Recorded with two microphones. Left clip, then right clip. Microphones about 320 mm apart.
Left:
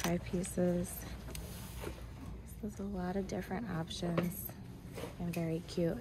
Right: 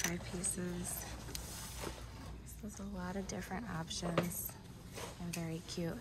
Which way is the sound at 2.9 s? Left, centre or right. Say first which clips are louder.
Left 4 dB; centre.